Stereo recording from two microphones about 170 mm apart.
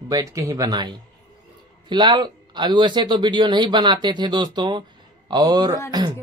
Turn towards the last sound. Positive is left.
turn(degrees=-25)  # may be behind; listen again after turning